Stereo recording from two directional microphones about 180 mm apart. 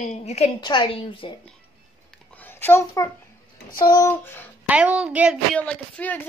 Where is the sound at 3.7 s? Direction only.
25° left (ahead or behind).